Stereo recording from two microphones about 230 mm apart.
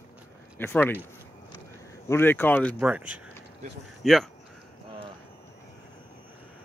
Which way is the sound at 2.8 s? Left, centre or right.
Centre.